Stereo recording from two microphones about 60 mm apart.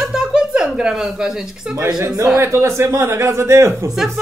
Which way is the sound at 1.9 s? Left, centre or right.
Right.